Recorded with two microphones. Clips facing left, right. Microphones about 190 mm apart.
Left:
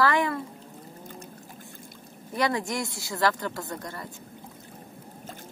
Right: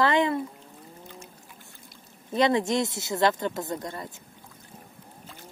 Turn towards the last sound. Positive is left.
turn(degrees=-20)  # may be behind; listen again after turning